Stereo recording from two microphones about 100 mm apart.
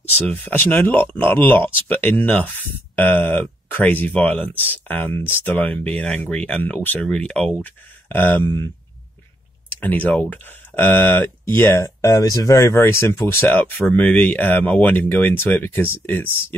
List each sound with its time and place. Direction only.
0.3 s speech: 15° left (ahead or behind)
9.7 s speech: 20° left (ahead or behind)